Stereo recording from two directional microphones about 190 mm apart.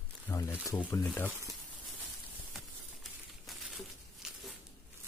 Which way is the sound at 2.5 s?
Centre (ahead or behind).